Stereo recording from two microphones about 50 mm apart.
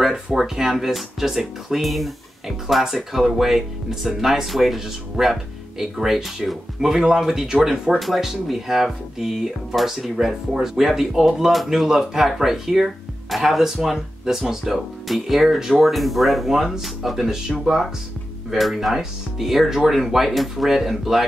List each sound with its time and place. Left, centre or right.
0.0 s speech: centre